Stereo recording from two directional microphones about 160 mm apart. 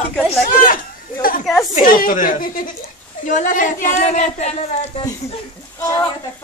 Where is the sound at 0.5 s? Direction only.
60° left (ahead or behind).